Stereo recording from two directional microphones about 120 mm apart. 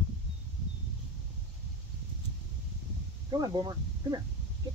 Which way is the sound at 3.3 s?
35° right (ahead or behind).